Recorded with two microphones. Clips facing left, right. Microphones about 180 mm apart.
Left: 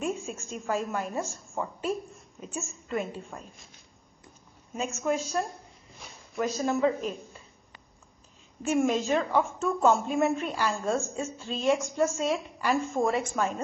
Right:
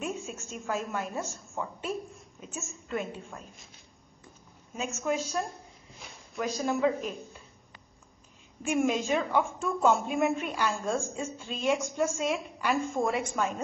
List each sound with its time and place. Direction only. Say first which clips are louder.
0.0 s a woman's voice: left 3 dB; 5° right (ahead or behind)
4.7 s a woman's voice: left 2 dB; 5° right (ahead or behind)
6.6 s a woman's voice: left 1 dB; 5° right (ahead or behind)
8.6 s a woman's voice: left 2 dB; 5° right (ahead or behind)